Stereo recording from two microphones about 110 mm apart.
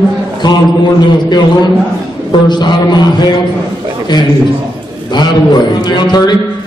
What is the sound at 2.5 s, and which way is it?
Speech, 40° left (ahead or behind).